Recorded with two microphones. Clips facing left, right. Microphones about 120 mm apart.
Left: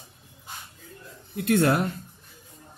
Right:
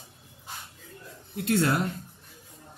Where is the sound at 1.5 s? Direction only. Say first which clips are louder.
Left 4 dB; 55° left (ahead or behind).